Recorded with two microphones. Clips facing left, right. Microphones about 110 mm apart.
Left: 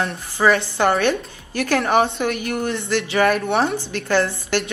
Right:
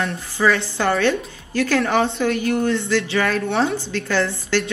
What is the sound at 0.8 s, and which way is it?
A woman's voice, 20° left (ahead or behind).